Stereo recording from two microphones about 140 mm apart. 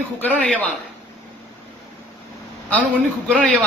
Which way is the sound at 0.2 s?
10° left (ahead or behind).